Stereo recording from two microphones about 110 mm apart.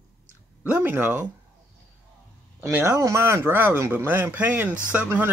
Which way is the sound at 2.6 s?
25° right (ahead or behind).